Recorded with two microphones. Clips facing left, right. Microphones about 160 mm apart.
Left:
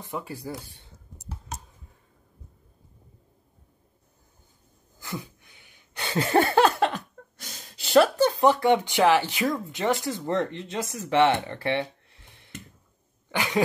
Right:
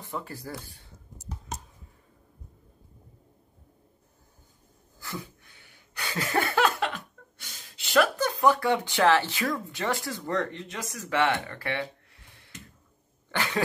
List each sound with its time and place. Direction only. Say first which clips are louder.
0.0 s speech: left 2 dB; 15° left (ahead or behind)
5.0 s a sound: left 2 dB; 15° left (ahead or behind)
13.3 s cough: left 2 dB; 15° left (ahead or behind)